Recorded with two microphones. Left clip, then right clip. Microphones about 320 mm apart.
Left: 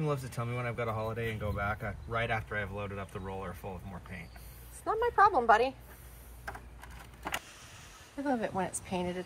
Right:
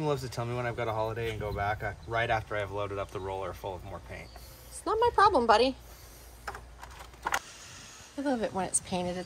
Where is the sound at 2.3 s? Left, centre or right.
Centre.